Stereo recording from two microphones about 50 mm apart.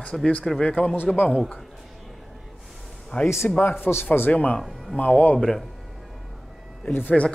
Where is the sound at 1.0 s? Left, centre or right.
Left.